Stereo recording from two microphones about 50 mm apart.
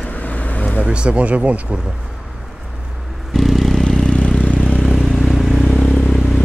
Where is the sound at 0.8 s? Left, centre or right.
Right.